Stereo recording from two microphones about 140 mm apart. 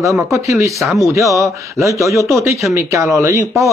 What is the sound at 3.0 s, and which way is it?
Speech, 20° right (ahead or behind).